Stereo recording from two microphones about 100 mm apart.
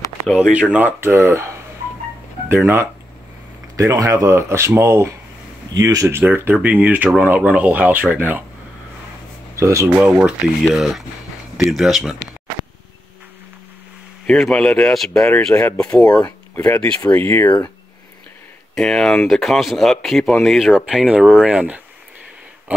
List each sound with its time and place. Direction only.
0.4 s speech: 10° right (ahead or behind)
3.7 s speech: 35° right (ahead or behind)
5.7 s speech: 35° right (ahead or behind); by 8.5 s 15° right (ahead or behind)
9.6 s speech: 30° right (ahead or behind)
9.9 s speech: 20° right (ahead or behind)
10.7 s speech: 5° right (ahead or behind)
14.2 s speech: 10° left (ahead or behind)
18.8 s speech: 5° left (ahead or behind); by 22.8 s 15° right (ahead or behind)